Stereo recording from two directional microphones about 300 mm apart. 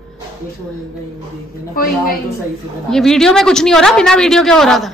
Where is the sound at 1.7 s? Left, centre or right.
Left.